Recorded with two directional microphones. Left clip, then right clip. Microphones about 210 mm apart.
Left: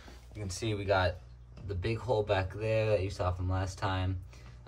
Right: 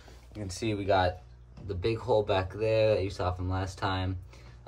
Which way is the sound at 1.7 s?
20° left (ahead or behind).